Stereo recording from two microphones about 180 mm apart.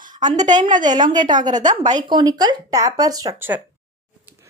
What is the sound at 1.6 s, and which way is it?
Speech, 45° right (ahead or behind).